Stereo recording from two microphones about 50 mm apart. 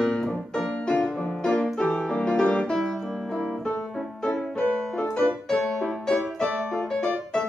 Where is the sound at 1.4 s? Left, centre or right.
Left.